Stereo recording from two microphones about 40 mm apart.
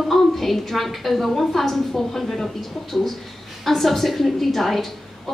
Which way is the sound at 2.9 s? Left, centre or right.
Centre.